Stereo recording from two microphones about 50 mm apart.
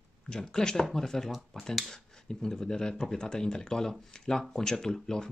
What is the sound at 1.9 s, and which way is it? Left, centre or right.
Speech, centre.